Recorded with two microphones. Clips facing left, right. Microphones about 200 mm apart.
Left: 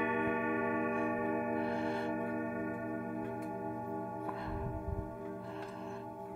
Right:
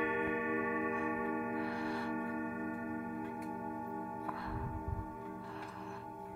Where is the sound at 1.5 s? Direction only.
25° left (ahead or behind).